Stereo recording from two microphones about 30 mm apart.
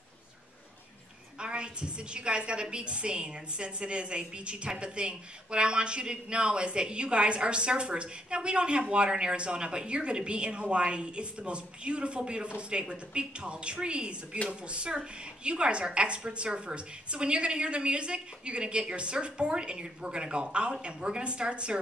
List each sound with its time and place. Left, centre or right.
1.4 s a woman's voice: right